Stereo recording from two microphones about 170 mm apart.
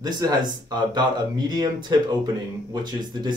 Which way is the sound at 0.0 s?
25° right (ahead or behind).